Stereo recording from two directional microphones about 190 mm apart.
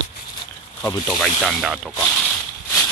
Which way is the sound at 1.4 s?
Centre (ahead or behind).